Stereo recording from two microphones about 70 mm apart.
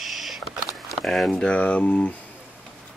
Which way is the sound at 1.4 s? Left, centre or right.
Centre.